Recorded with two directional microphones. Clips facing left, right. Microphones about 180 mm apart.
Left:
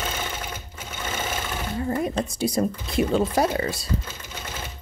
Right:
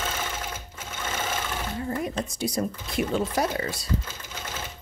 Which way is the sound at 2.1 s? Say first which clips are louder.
Left 4 dB; 30° left (ahead or behind).